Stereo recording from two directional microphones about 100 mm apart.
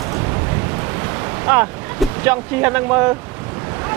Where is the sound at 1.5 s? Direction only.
15° right (ahead or behind).